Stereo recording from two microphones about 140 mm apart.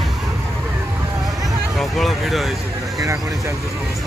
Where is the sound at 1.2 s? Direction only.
Centre (ahead or behind).